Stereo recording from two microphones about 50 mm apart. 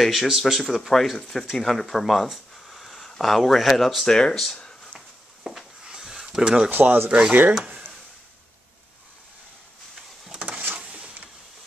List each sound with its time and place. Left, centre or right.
0.0 s speech: centre
5.4 s a sound: centre
6.4 s speech: centre
6.7 s speech: right
7.1 s speech: centre
10.3 s a sound: right